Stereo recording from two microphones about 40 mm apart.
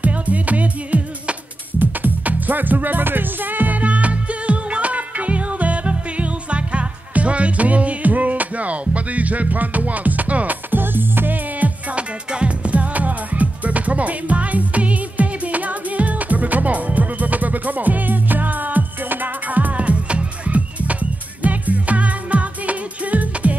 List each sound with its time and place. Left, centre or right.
0.0 s music: right
1.8 s music: right
11.6 s music: right
12.3 s music: right